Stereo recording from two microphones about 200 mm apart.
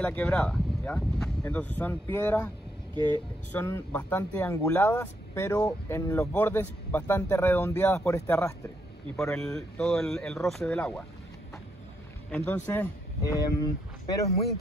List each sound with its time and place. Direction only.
0.0 s a man's voice: 5° left (ahead or behind)
9.2 s speech: centre (ahead or behind)
12.3 s speech: 5° left (ahead or behind)